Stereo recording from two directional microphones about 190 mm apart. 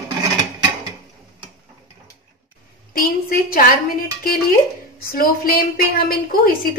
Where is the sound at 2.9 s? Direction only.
50° left (ahead or behind).